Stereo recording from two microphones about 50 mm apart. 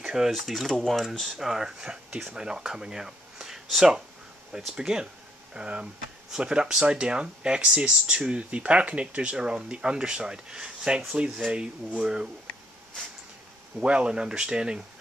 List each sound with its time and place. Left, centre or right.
0.0 s a sound: centre
0.3 s speech: centre
1.4 s speech: centre
13.7 s speech: right